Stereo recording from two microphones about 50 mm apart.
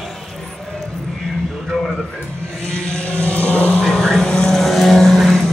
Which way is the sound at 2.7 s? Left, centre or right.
Left.